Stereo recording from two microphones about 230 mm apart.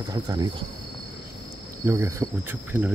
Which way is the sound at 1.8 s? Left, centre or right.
Centre.